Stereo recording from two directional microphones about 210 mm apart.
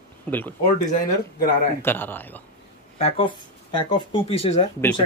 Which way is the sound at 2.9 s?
30° left (ahead or behind).